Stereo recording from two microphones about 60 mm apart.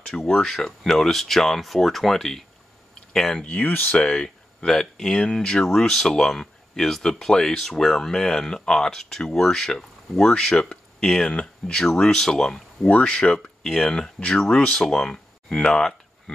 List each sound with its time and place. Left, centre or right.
0.3 s speech: centre
2.9 s a sound: centre
3.4 s speech: left
3.9 s speech: centre
12.9 s speech: left
13.6 s speech: centre